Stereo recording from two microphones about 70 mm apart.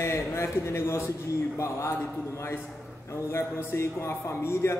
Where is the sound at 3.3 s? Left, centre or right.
Left.